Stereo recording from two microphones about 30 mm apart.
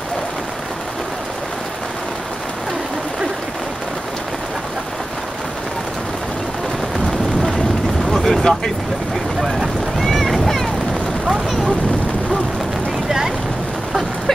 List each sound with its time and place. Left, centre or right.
7.1 s vehicle: centre
8.4 s speech: centre
9.9 s boat: centre